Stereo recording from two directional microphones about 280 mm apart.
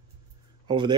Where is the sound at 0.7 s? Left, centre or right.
Centre.